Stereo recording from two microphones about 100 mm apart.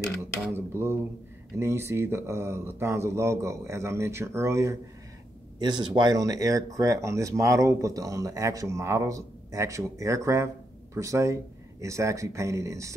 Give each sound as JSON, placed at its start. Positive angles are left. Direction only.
{"t": 0.5, "sound": "speech", "side_deg": -25}
{"t": 5.6, "sound": "speech", "side_deg": -50}